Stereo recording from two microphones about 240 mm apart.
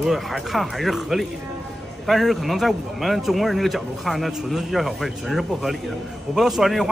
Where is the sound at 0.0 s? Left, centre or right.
Centre.